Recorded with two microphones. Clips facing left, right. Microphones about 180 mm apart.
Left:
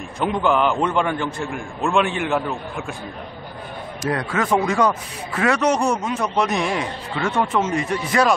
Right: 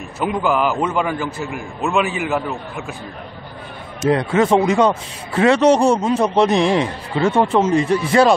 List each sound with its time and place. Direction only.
0.2 s a man's voice: 5° right (ahead or behind)
4.0 s a man's voice: 25° right (ahead or behind)